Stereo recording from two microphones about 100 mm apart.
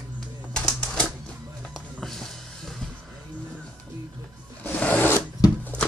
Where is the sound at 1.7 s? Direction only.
5° left (ahead or behind).